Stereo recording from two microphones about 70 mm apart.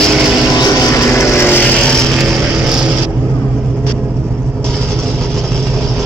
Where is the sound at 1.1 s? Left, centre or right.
Left.